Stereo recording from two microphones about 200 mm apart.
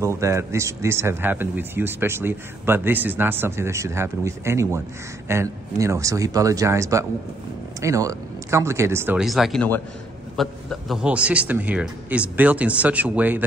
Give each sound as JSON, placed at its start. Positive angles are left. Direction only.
{"t": 0.0, "sound": "speech", "side_deg": -15}